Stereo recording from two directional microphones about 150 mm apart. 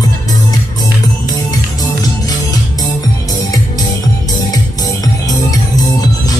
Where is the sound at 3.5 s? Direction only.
25° left (ahead or behind).